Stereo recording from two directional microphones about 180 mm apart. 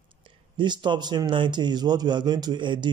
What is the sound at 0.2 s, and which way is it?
Speech, 25° right (ahead or behind).